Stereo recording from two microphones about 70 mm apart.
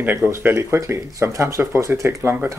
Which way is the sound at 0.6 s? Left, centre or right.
Right.